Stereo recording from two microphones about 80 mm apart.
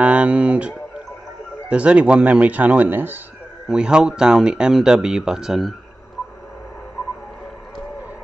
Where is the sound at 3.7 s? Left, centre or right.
Centre.